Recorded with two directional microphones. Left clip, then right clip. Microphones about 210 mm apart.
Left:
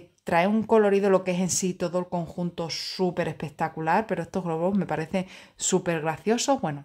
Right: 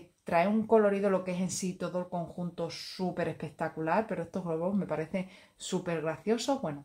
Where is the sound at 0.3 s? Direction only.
45° left (ahead or behind).